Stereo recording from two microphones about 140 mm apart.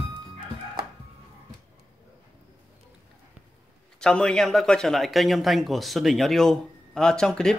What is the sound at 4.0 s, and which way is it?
A man's voice, 5° left (ahead or behind).